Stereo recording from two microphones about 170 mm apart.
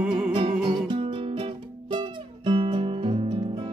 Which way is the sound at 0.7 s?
30° right (ahead or behind).